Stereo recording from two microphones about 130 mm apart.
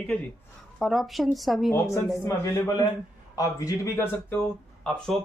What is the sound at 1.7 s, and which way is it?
A man's voice, 20° left (ahead or behind).